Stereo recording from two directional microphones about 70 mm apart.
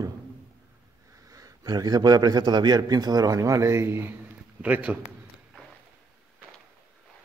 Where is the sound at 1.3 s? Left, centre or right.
Right.